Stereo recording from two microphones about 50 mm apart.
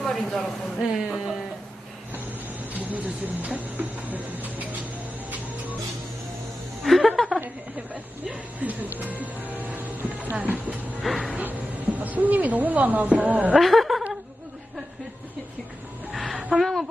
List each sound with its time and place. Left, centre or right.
0.0 s speech: centre
0.9 s music: centre
2.7 s speech: right
6.8 s music: centre
7.9 s speech: right
11.0 s a sound: centre
11.3 s speech: right
13.6 s chuckle: centre
16.1 s music: centre